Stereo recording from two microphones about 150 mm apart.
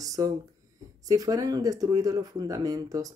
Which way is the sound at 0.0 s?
25° right (ahead or behind).